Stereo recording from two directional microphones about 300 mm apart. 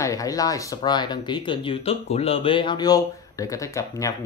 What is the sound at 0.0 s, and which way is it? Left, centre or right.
Speech, centre.